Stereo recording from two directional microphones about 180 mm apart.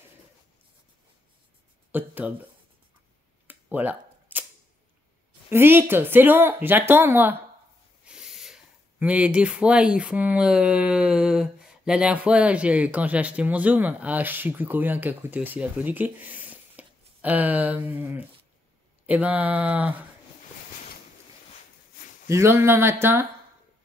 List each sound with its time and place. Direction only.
1.9 s speech: 10° right (ahead or behind)
3.4 s camera: 10° right (ahead or behind)
5.5 s speech: 10° right (ahead or behind)
8.1 s sneeze: 5° right (ahead or behind)
9.0 s speech: 5° right (ahead or behind)
21.9 s a sound: 45° left (ahead or behind)
22.3 s speech: 15° right (ahead or behind)